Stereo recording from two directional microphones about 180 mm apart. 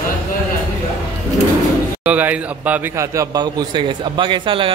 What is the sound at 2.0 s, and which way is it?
A man's voice, 10° right (ahead or behind).